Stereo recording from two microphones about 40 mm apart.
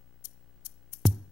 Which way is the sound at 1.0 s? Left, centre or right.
Centre.